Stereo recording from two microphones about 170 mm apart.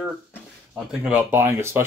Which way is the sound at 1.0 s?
10° right (ahead or behind).